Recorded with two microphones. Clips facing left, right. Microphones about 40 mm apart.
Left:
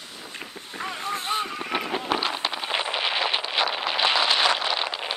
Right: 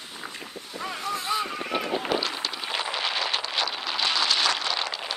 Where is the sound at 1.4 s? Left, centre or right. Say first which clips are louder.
Even; centre.